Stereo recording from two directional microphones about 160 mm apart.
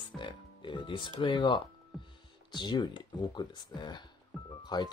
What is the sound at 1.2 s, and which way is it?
Speech, 30° left (ahead or behind).